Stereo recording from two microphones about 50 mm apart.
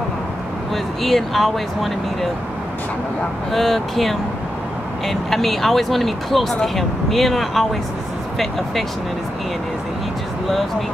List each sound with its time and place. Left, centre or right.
1.0 s speech: centre
3.5 s speech: centre